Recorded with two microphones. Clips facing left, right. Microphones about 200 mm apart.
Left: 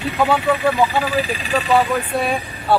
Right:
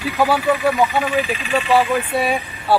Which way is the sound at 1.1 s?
35° left (ahead or behind).